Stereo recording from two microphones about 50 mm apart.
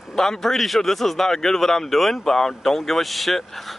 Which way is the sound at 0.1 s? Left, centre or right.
Centre.